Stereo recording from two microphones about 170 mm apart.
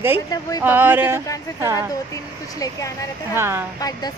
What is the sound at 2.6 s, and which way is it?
Speech, 20° left (ahead or behind).